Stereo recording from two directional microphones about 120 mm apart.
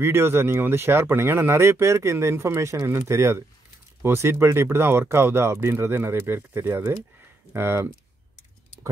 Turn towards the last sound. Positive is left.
turn(degrees=-20)  # may be behind; listen again after turning